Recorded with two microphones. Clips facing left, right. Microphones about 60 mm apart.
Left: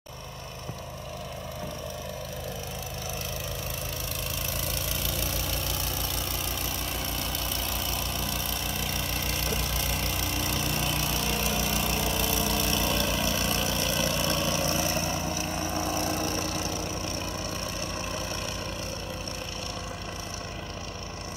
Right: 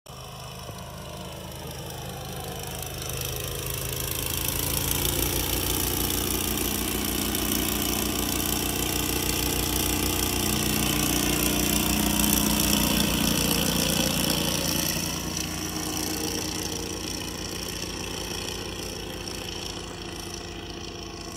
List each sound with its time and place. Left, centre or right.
4.8 s vehicle: centre
14.5 s vehicle: left